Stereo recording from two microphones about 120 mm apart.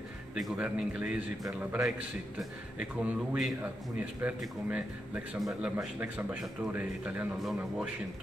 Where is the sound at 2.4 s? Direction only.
10° right (ahead or behind).